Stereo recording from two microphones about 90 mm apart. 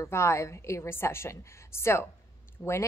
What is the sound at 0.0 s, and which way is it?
A woman's voice, 30° left (ahead or behind).